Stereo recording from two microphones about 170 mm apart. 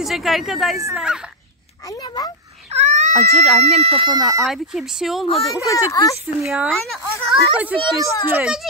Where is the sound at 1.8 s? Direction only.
25° left (ahead or behind).